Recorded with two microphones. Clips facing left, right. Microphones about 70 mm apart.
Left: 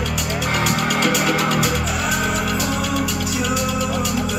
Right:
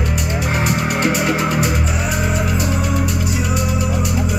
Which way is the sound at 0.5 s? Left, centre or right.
Right.